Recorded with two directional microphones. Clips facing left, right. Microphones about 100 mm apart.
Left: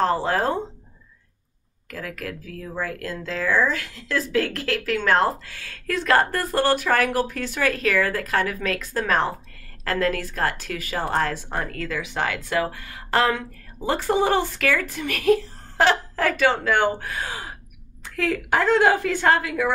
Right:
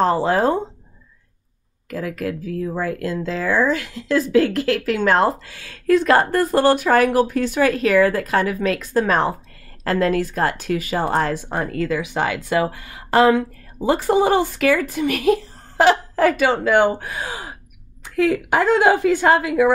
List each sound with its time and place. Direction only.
0.0 s speech: 20° right (ahead or behind)
1.9 s speech: 20° right (ahead or behind)